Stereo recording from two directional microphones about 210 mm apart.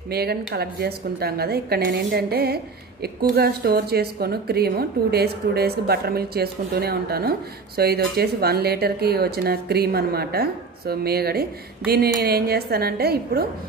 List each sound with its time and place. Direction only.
0.1 s a woman's voice: 50° right (ahead or behind)